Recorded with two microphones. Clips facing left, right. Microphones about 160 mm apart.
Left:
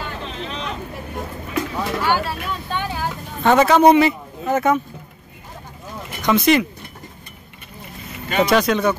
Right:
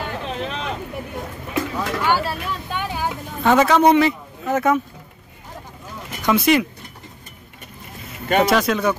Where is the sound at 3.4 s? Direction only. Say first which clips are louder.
Left 2 dB; centre (ahead or behind).